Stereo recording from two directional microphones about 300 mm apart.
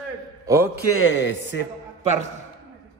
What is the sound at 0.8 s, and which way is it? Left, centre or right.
Speech, left.